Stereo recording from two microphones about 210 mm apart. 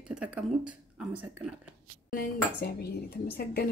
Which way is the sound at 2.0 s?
45° left (ahead or behind).